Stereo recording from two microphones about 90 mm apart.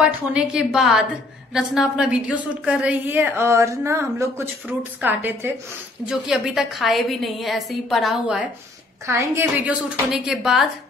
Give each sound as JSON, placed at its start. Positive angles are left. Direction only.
{"t": 0.0, "sound": "a woman's voice", "side_deg": -15}
{"t": 3.1, "sound": "speech", "side_deg": -25}
{"t": 6.0, "sound": "a woman's voice", "side_deg": -10}
{"t": 9.0, "sound": "a woman's voice", "side_deg": -30}
{"t": 10.1, "sound": "a woman's voice", "side_deg": -5}